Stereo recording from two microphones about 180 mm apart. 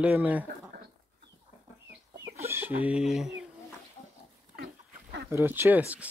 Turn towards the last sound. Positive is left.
turn(degrees=-10)  # may be behind; listen again after turning